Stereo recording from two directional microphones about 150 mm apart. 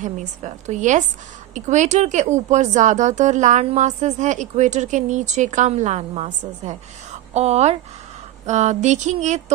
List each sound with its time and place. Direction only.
0.0 s a woman's voice: 55° right (ahead or behind)